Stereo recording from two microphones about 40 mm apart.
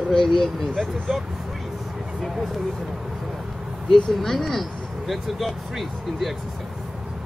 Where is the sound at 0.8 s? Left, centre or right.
Centre.